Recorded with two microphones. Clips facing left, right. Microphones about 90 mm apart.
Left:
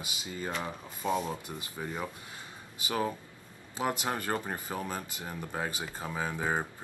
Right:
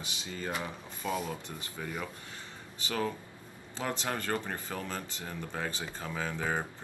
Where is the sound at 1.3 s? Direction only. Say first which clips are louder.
Left 2 dB; 20° left (ahead or behind).